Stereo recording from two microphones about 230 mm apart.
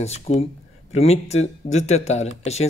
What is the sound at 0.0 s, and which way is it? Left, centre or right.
Speech, left.